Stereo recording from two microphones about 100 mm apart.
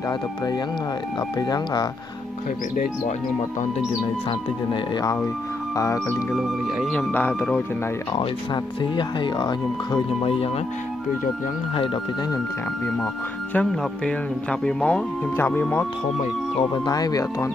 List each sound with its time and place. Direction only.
1.4 s speech: 40° left (ahead or behind)
4.9 s speech: 40° left (ahead or behind)
6.3 s speech: centre (ahead or behind)
7.1 s speech: 20° left (ahead or behind)
8.8 s speech: 50° left (ahead or behind)
11.7 s speech: 60° left (ahead or behind)
13.5 s speech: 10° left (ahead or behind)
15.3 s speech: 20° left (ahead or behind)
16.5 s speech: 45° left (ahead or behind)